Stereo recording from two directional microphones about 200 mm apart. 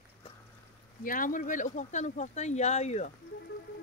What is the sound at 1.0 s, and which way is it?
Speech, 45° left (ahead or behind).